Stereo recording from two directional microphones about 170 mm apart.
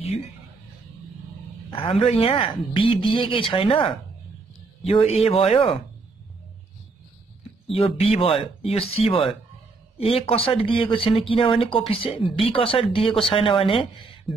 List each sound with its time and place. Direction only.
1.7 s speech: 30° left (ahead or behind)
7.7 s speech: 35° left (ahead or behind)